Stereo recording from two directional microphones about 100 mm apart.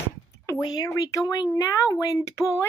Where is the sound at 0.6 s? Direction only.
40° left (ahead or behind).